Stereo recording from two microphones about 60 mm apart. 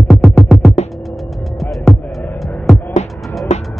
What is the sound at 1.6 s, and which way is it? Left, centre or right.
Music, centre.